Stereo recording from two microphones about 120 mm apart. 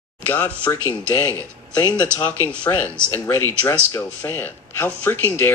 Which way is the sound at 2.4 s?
10° left (ahead or behind).